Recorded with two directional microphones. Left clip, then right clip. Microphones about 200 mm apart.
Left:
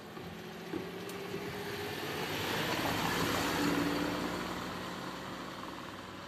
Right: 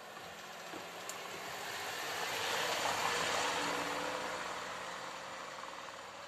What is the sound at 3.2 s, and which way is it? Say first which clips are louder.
Vehicle: left 2 dB; 40° left (ahead or behind).